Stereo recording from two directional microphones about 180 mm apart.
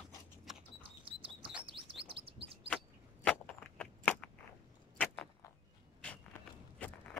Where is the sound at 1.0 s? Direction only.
30° right (ahead or behind).